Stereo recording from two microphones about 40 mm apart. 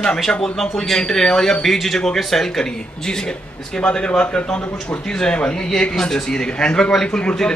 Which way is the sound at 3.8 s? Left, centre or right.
Left.